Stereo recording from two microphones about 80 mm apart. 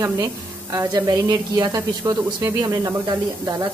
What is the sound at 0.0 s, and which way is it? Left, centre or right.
Speech, right.